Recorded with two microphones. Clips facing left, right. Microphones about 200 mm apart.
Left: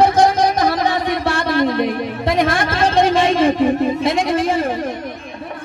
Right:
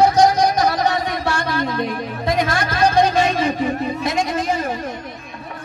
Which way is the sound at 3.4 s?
55° left (ahead or behind).